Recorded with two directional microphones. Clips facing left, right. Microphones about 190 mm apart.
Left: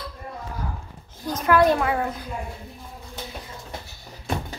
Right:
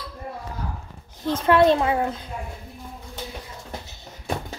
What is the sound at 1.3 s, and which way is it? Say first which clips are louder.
Speech: right 2 dB; 25° right (ahead or behind).